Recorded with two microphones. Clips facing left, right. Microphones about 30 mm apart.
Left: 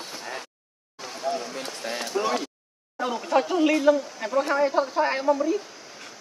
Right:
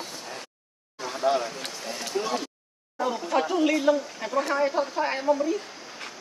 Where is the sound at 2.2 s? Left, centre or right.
Centre.